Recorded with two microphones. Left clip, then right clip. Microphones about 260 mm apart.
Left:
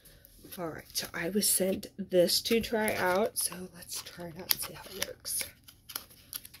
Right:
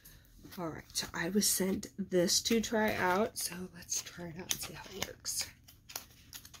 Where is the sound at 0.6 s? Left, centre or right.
Centre.